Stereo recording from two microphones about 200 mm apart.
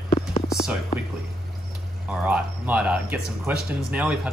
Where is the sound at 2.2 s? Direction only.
5° right (ahead or behind).